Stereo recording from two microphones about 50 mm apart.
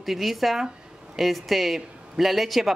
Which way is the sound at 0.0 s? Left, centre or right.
Centre.